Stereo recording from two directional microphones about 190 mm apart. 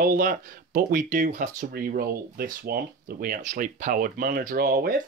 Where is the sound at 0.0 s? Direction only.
45° right (ahead or behind).